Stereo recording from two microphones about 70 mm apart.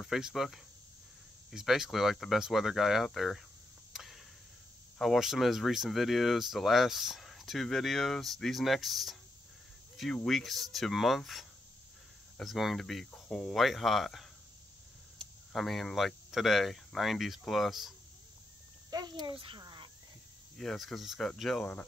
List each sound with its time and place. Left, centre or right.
0.0 s speech: centre
3.9 s a sound: centre
4.9 s speech: centre
10.2 s speech: centre
13.1 s speech: centre
13.6 s speech: centre
15.5 s speech: centre
18.9 s speech: right
20.5 s speech: centre